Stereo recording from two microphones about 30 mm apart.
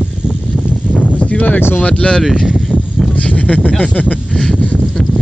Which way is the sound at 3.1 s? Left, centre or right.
Left.